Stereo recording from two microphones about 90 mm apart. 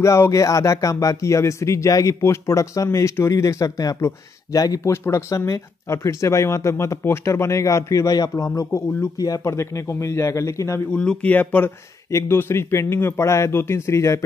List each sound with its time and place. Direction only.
0.0 s speech: 35° left (ahead or behind)
4.9 s speech: 30° left (ahead or behind)
10.9 s speech: 10° left (ahead or behind)
12.1 s speech: 30° left (ahead or behind)